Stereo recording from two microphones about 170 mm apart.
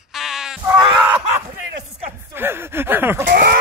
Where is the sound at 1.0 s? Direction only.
10° right (ahead or behind).